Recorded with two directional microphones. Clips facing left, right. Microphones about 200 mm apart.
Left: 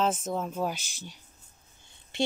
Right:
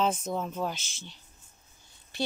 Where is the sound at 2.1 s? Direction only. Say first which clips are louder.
Left 3 dB; 25° left (ahead or behind).